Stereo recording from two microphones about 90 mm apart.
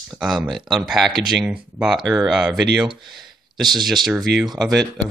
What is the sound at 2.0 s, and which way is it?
Speech, 45° right (ahead or behind).